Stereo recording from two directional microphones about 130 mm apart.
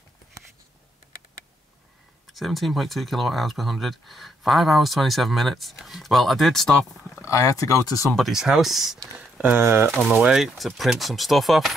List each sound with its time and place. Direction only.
2.3 s speech: centre (ahead or behind)
7.2 s speech: 25° left (ahead or behind)
8.1 s speech: centre (ahead or behind)
9.4 s speech: 15° right (ahead or behind)
9.8 s speech: centre (ahead or behind)